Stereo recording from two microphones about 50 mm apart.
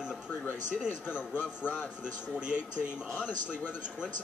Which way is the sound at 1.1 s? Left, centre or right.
Left.